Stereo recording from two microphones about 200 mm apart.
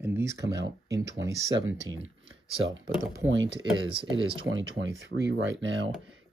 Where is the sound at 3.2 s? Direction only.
65° right (ahead or behind).